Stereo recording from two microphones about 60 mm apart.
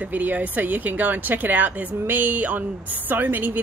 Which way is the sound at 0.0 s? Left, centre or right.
Right.